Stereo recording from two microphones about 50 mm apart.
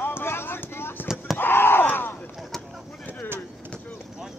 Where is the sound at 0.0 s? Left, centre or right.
Left.